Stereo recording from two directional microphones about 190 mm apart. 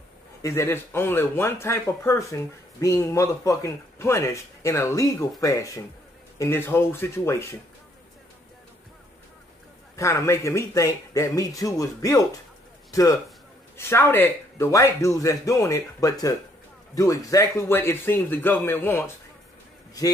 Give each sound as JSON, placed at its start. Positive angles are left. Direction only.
{"t": 0.4, "sound": "speech", "side_deg": 15}
{"t": 9.9, "sound": "a man's voice", "side_deg": 15}